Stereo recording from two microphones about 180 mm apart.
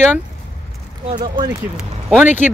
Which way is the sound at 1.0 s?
25° right (ahead or behind).